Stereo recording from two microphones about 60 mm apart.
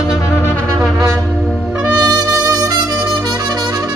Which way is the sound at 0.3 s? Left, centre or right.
Left.